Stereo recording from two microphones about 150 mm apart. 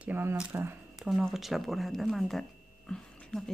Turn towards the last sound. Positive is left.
turn(degrees=5)  # may be behind; listen again after turning